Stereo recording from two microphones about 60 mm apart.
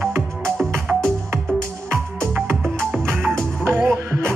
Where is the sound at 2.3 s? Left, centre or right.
Right.